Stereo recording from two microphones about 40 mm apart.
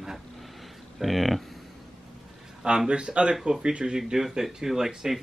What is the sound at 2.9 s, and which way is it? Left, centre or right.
Speech, right.